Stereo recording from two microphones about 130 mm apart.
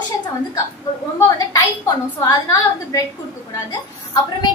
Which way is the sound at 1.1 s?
25° left (ahead or behind).